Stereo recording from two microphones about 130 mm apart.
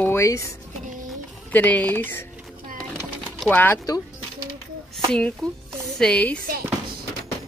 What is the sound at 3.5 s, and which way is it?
Speech, 15° left (ahead or behind).